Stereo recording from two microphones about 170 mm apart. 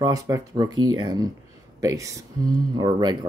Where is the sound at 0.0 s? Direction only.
20° right (ahead or behind).